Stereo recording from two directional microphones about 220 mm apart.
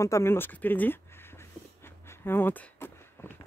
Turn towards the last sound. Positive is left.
turn(degrees=10)  # may be behind; listen again after turning